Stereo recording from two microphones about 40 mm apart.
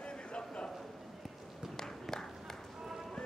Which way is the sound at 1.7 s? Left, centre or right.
Centre.